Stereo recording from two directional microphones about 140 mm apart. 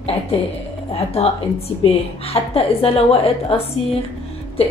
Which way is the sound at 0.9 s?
45° left (ahead or behind).